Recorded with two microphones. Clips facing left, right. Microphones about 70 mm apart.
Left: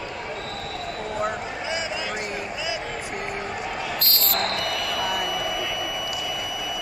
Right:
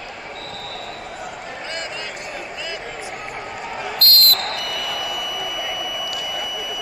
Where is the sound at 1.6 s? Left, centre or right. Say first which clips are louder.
Even; centre.